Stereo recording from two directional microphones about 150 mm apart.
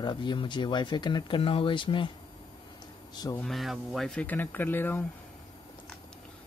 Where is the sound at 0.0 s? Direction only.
30° left (ahead or behind).